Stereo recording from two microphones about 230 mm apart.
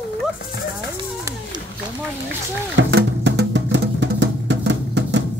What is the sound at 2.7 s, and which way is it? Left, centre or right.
Music, right.